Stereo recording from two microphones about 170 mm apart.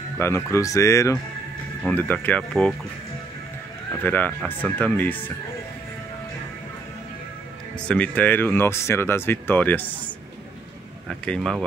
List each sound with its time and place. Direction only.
0.5 s speech: 20° left (ahead or behind)
4.0 s speech: 10° left (ahead or behind)
7.8 s speech: 5° left (ahead or behind)